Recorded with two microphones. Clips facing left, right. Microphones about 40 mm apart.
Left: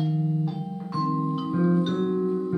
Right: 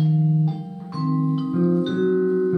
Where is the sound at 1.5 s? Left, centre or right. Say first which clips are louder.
Right 1 dB; centre.